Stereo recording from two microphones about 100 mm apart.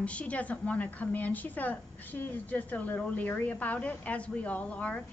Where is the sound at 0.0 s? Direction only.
15° left (ahead or behind).